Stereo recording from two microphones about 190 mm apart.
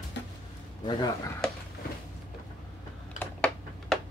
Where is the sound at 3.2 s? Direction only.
5° left (ahead or behind).